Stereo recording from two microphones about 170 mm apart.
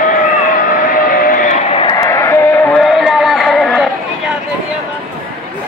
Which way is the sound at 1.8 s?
25° left (ahead or behind).